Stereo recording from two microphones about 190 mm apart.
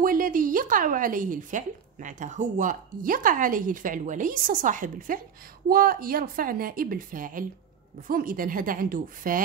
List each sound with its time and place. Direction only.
0.0 s speech: 45° right (ahead or behind)